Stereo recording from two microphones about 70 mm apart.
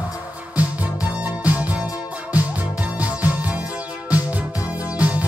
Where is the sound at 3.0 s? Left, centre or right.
Right.